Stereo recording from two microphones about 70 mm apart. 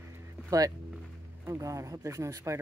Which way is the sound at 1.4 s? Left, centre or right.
Right.